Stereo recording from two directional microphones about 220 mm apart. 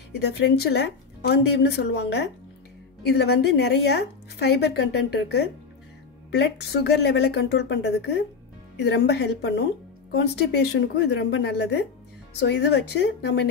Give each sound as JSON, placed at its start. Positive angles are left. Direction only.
{"t": 0.2, "sound": "a woman's voice", "side_deg": 50}